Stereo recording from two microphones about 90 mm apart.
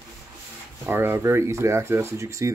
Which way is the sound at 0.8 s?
25° right (ahead or behind).